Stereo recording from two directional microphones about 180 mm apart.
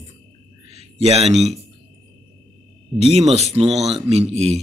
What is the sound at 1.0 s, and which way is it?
Speech, 35° right (ahead or behind).